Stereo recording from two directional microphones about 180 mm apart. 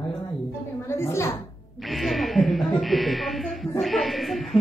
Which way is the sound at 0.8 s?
15° left (ahead or behind).